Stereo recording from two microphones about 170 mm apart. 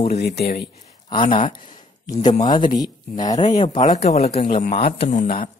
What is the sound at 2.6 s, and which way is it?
Speech, 50° left (ahead or behind).